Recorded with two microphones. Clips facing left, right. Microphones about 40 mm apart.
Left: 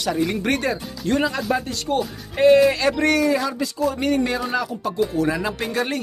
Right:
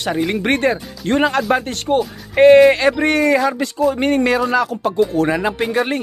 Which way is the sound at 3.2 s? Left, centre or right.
Right.